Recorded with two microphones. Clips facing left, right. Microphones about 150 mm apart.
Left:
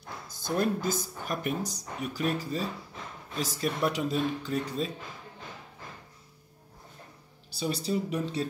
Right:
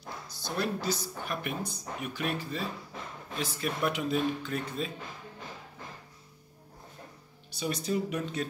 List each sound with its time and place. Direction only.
0.3 s speech: 50° left (ahead or behind)
7.5 s speech: 30° left (ahead or behind)